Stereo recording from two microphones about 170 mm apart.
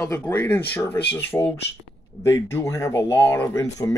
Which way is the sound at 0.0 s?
15° left (ahead or behind).